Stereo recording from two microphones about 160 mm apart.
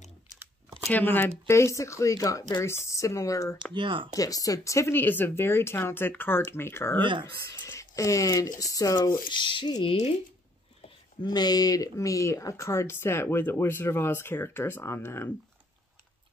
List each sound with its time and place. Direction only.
0.8 s speech: 10° left (ahead or behind)
3.7 s speech: 30° right (ahead or behind)
4.1 s speech: 20° left (ahead or behind)
7.0 s speech: 30° right (ahead or behind)
7.6 s a sound: 20° left (ahead or behind)
8.5 s speech: 20° left (ahead or behind)
11.2 s speech: 25° left (ahead or behind)